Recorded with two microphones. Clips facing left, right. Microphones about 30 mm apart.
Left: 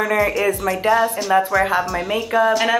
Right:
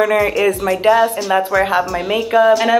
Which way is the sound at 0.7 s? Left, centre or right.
Centre.